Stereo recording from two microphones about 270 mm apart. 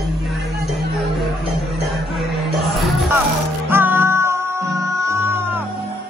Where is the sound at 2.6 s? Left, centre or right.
Centre.